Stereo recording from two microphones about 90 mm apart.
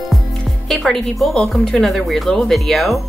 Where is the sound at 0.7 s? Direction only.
5° left (ahead or behind).